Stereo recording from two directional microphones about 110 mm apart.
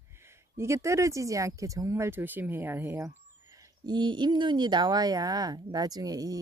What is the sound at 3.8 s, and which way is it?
Speech, 40° right (ahead or behind).